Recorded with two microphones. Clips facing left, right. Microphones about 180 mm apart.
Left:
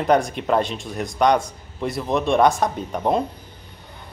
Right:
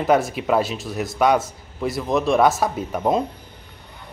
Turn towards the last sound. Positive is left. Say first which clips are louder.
# right 1 dB
turn(degrees=-5)  # may be behind; listen again after turning